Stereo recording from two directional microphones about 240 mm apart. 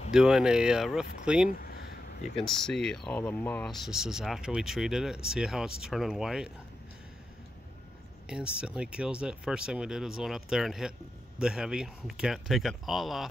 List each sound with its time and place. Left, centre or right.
0.1 s speech: centre
1.5 s a sound: left
2.3 s speech: centre
8.3 s speech: centre